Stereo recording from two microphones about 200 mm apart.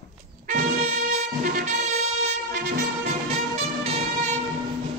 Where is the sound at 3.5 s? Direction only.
30° right (ahead or behind).